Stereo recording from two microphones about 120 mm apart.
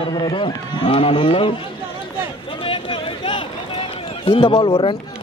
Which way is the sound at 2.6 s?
50° left (ahead or behind).